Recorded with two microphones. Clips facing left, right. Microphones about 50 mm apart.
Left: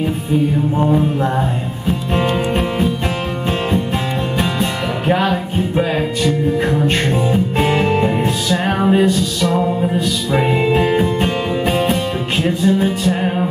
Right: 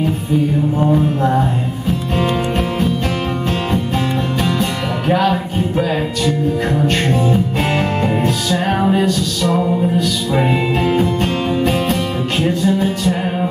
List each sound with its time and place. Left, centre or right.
0.7 s mantra: centre
2.1 s music: centre
4.4 s music: centre
6.9 s music: centre